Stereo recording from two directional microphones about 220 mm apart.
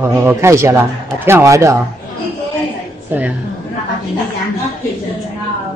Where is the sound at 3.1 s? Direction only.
10° right (ahead or behind).